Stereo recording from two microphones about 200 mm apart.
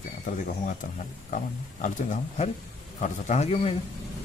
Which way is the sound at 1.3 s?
40° left (ahead or behind).